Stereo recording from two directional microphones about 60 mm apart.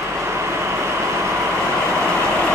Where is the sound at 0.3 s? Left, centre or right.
Right.